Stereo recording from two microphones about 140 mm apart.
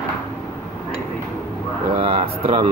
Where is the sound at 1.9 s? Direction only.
45° right (ahead or behind).